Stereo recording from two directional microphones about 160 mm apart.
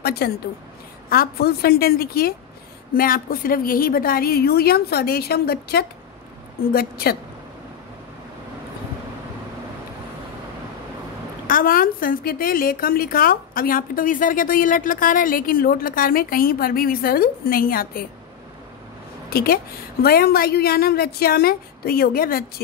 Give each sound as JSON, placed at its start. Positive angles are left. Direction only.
{"t": 0.0, "sound": "a woman's voice", "side_deg": 85}
{"t": 6.6, "sound": "a woman's voice", "side_deg": 70}
{"t": 11.4, "sound": "a woman's voice", "side_deg": 60}
{"t": 19.3, "sound": "a woman's voice", "side_deg": 70}